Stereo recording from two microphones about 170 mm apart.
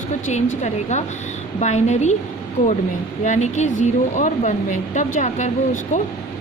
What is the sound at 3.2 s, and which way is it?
A woman's voice, 45° left (ahead or behind).